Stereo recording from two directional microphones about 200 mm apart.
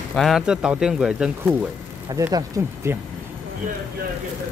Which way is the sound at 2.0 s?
15° right (ahead or behind).